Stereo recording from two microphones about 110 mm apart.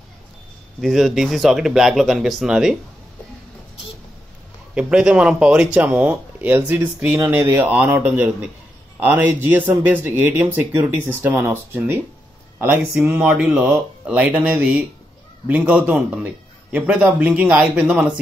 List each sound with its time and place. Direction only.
0.7 s speech: centre (ahead or behind)
4.9 s speech: 10° right (ahead or behind)